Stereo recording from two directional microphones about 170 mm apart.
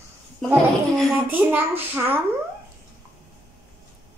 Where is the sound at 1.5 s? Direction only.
10° right (ahead or behind).